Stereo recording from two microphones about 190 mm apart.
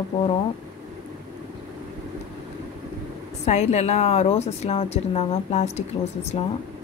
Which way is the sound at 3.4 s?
35° left (ahead or behind).